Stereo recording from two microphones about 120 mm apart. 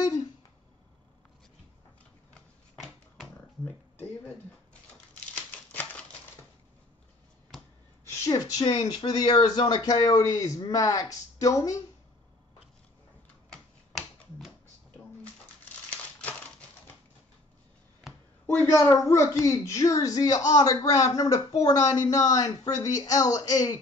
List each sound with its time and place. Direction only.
2.3 s a sound: 5° left (ahead or behind)
5.3 s typewriter: 10° left (ahead or behind)
8.3 s speech: 30° left (ahead or behind)
13.5 s typewriter: centre (ahead or behind)
15.9 s crumpling: 10° left (ahead or behind)
18.7 s speech: 25° left (ahead or behind)